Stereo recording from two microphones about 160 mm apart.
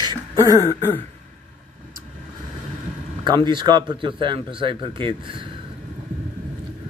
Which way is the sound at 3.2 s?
30° right (ahead or behind).